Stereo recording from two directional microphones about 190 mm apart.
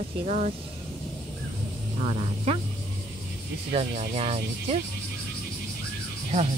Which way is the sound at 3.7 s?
35° right (ahead or behind).